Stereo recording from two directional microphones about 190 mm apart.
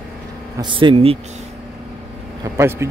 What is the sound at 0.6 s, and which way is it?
Speech, 25° right (ahead or behind).